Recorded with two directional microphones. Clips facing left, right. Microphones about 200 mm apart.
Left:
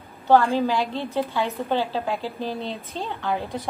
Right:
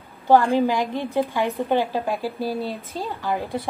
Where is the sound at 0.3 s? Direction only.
15° right (ahead or behind).